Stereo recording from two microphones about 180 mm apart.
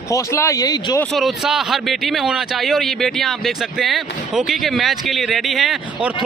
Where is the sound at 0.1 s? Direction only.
15° left (ahead or behind).